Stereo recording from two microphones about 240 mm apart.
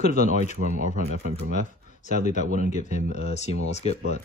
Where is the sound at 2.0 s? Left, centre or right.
Left.